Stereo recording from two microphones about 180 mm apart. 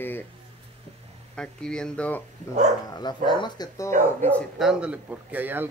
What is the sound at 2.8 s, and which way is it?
Speech, 25° left (ahead or behind).